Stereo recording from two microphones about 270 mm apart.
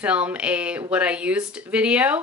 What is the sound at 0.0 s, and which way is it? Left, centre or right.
A woman's voice, centre.